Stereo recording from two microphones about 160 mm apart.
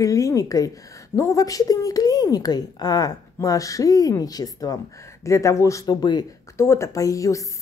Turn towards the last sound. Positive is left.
turn(degrees=20)  # may be behind; listen again after turning